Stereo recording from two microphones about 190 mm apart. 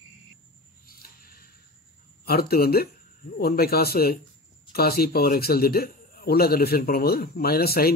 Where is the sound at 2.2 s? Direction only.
55° left (ahead or behind).